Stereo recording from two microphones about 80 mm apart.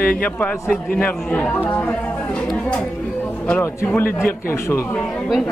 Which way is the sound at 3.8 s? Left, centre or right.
Left.